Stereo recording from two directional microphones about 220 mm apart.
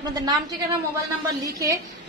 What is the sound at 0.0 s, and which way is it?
Speech, 15° right (ahead or behind).